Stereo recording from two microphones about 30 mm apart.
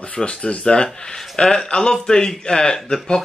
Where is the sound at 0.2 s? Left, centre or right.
Centre.